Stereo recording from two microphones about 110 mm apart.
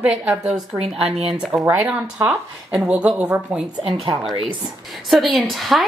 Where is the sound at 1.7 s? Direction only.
15° right (ahead or behind).